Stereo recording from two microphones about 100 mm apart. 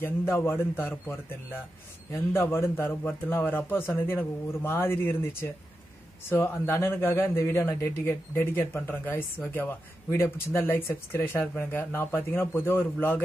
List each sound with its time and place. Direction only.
0.0 s a man's voice: 25° left (ahead or behind)